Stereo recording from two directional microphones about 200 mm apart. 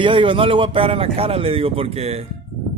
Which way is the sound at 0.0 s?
25° right (ahead or behind).